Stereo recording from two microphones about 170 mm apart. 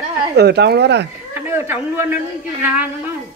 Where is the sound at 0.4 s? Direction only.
75° right (ahead or behind).